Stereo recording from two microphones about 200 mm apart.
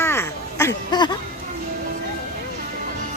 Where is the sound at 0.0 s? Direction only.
10° left (ahead or behind).